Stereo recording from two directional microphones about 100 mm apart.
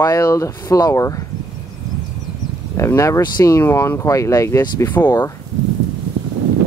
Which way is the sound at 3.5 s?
30° left (ahead or behind).